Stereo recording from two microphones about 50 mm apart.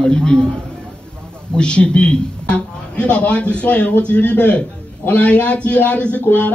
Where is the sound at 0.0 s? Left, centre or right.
Centre.